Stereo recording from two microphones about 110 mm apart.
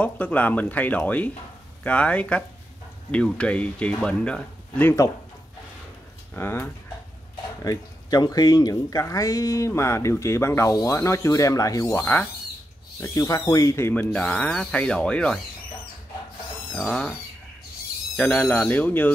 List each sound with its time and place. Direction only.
0.0 s speech: 15° left (ahead or behind)
6.3 s speech: 20° left (ahead or behind)
7.6 s speech: 35° left (ahead or behind); by 12.3 s 15° left (ahead or behind)
13.0 s speech: 30° left (ahead or behind); by 15.4 s 10° left (ahead or behind)
16.7 s speech: 5° left (ahead or behind)
18.1 s speech: 15° left (ahead or behind)